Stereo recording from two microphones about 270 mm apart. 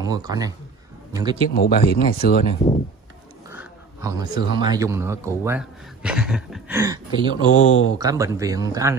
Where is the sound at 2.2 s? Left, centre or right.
Left.